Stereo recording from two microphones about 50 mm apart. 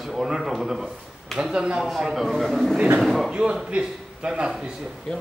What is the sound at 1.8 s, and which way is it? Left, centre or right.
A man's voice, centre.